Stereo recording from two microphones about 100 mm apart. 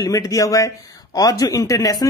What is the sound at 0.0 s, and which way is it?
Speech, 35° left (ahead or behind).